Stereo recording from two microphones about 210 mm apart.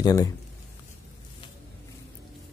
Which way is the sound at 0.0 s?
20° left (ahead or behind).